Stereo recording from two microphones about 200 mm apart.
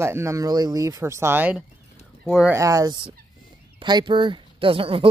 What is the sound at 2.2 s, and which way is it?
Speech, centre (ahead or behind).